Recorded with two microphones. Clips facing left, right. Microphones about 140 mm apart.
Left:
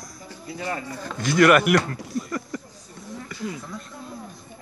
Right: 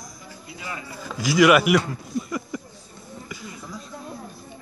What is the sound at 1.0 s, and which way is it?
Speech, 5° right (ahead or behind).